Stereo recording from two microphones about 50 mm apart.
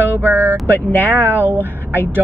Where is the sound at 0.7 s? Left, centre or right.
Left.